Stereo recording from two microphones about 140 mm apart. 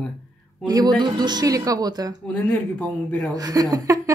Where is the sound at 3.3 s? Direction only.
25° right (ahead or behind).